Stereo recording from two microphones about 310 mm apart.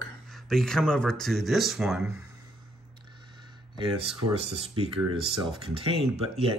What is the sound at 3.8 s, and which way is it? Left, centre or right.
Speech, centre.